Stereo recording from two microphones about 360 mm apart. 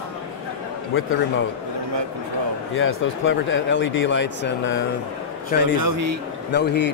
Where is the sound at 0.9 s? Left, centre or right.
Left.